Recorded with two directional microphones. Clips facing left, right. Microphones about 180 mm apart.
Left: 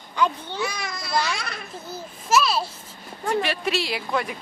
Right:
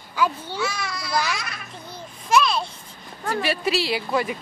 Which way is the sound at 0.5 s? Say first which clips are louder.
Right 1 dB; 15° left (ahead or behind).